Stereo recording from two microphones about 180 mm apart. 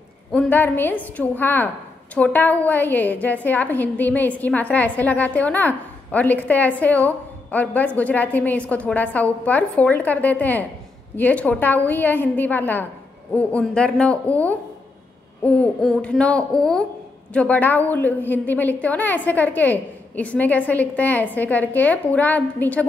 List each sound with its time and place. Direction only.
0.3 s a woman's voice: 10° left (ahead or behind)